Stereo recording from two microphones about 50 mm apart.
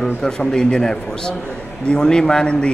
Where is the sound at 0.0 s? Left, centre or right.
Centre.